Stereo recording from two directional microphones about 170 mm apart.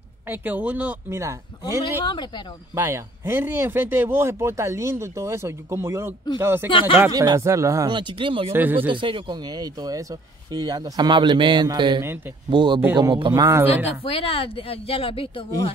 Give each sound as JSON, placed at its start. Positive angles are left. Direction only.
{"t": 0.3, "sound": "speech", "side_deg": -10}
{"t": 1.6, "sound": "speech", "side_deg": 25}
{"t": 2.7, "sound": "speech", "side_deg": -15}
{"t": 6.7, "sound": "speech", "side_deg": 30}
{"t": 7.1, "sound": "speech", "side_deg": -20}
{"t": 8.5, "sound": "speech", "side_deg": -10}
{"t": 8.8, "sound": "speech", "side_deg": -30}
{"t": 13.8, "sound": "speech", "side_deg": 35}